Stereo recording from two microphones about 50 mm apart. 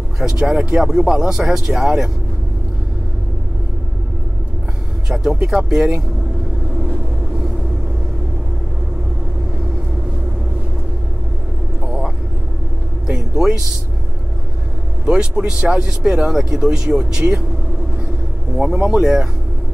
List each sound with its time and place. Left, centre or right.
0.2 s speech: centre
5.1 s speech: centre
11.8 s vehicle: centre
13.0 s music: centre
15.0 s speech: centre
18.6 s speech: centre